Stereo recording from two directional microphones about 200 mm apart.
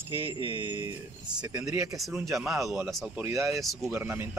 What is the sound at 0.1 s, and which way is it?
Speech, 25° right (ahead or behind).